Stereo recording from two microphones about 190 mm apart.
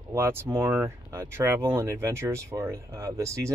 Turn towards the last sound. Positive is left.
turn(degrees=-15)  # may be behind; listen again after turning